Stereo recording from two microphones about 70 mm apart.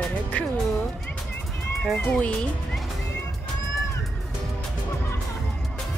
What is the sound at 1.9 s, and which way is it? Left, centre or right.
Speech, centre.